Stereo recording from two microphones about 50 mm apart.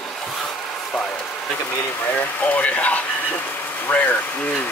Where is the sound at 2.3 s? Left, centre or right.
Left.